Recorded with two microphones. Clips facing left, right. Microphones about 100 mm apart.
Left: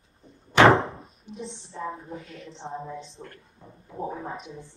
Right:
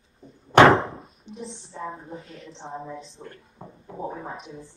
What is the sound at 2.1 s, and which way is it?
Speech, 30° right (ahead or behind).